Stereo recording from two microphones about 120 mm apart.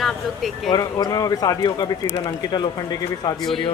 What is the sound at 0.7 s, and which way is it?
Speech, 30° left (ahead or behind).